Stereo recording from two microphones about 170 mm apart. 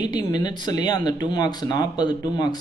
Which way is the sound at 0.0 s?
25° left (ahead or behind).